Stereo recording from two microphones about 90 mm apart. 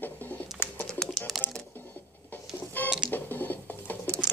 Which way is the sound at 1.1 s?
Centre (ahead or behind).